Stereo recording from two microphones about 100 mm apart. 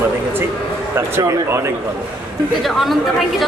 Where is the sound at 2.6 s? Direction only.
Centre (ahead or behind).